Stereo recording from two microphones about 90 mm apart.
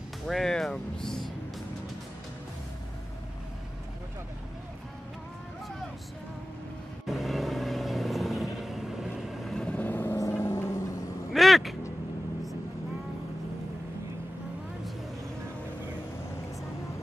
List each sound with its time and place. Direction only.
0.3 s speech: 5° left (ahead or behind)
7.1 s vehicle: centre (ahead or behind); by 10.8 s 30° left (ahead or behind)
11.3 s a sound: centre (ahead or behind)